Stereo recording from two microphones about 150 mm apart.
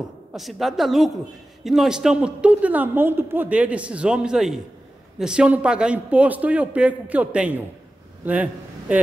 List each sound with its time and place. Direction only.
0.3 s a woman's voice: centre (ahead or behind)